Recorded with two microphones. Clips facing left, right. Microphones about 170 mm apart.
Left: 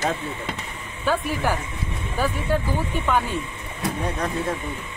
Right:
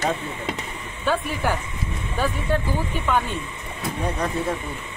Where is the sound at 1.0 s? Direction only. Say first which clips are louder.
Even; 10° left (ahead or behind).